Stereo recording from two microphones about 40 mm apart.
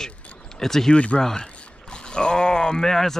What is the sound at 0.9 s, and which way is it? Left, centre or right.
Speech, left.